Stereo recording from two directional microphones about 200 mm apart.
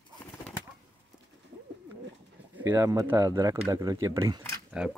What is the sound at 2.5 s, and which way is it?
Speech, 10° right (ahead or behind).